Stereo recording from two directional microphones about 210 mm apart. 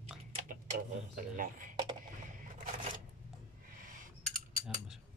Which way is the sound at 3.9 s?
40° right (ahead or behind).